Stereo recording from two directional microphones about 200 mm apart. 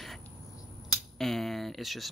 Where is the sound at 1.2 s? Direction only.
Centre (ahead or behind).